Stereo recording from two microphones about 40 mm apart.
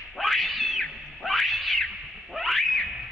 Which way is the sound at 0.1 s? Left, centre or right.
Centre.